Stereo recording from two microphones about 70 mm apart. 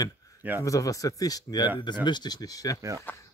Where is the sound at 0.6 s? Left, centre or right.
Left.